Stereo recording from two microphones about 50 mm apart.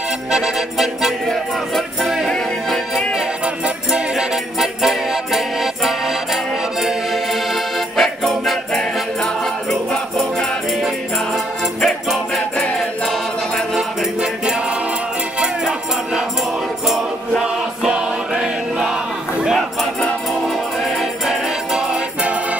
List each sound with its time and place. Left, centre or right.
0.3 s music: centre
3.6 s music: centre
7.5 s music: centre
11.8 s music: centre
13.7 s music: centre
17.4 s choir: centre
21.7 s music: right